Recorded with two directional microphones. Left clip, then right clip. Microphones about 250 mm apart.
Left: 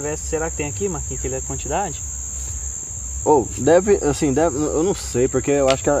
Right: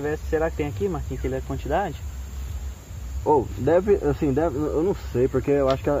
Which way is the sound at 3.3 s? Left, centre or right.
Left.